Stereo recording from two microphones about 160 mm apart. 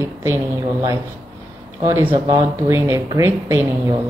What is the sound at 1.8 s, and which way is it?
Speech, 15° right (ahead or behind).